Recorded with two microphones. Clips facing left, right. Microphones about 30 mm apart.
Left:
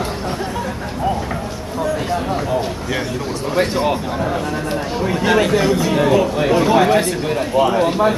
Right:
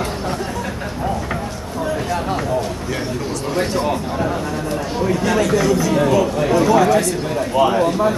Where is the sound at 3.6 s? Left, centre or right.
Left.